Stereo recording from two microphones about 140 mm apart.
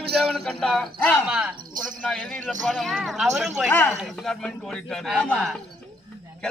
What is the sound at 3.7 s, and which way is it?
Speech, 15° left (ahead or behind).